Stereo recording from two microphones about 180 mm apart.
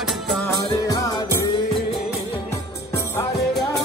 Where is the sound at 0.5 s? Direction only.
20° left (ahead or behind).